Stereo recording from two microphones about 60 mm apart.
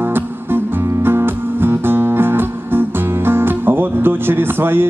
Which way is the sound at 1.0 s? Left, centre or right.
Right.